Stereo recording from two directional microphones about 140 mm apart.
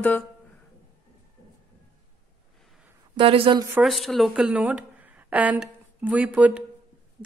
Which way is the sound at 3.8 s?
Centre (ahead or behind).